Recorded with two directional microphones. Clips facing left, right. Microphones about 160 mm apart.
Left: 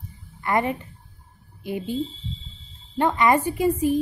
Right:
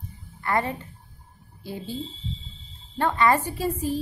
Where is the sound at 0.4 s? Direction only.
20° left (ahead or behind).